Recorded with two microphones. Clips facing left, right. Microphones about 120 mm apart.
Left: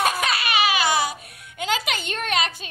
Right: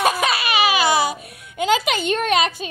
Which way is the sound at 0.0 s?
10° right (ahead or behind).